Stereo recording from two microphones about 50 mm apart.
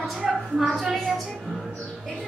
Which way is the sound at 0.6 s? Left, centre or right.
Centre.